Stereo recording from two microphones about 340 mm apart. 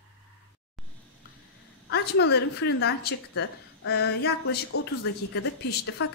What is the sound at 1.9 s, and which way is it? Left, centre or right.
A woman's voice, left.